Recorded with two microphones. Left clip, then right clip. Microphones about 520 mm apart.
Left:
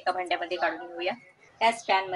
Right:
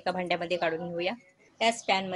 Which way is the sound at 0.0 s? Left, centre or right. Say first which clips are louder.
Left 2 dB; right.